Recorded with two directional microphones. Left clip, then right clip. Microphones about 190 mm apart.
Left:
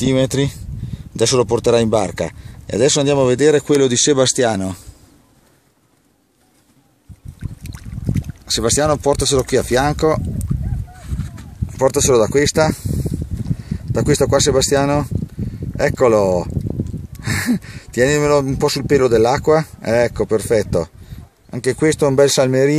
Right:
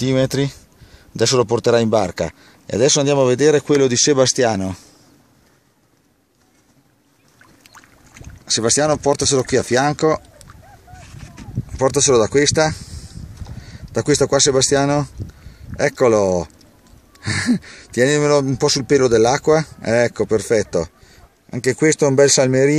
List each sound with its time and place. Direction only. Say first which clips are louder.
0.0 s speech: left 1 dB; centre (ahead or behind)
7.6 s boat: left 14 dB; 35° left (ahead or behind)
8.5 s speech: even; centre (ahead or behind)
11.7 s speech: left 1 dB; centre (ahead or behind)